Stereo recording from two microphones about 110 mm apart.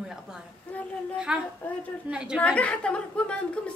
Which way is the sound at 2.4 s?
10° left (ahead or behind).